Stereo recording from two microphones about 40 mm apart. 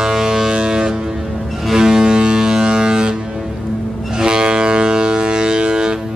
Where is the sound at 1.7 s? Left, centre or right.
Centre.